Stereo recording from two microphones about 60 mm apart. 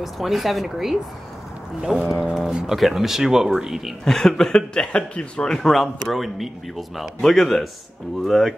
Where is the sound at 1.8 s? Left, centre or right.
Centre.